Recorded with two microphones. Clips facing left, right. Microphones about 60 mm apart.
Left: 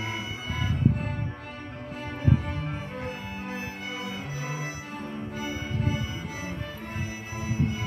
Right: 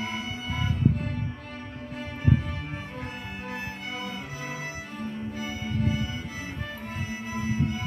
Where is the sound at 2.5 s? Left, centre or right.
Centre.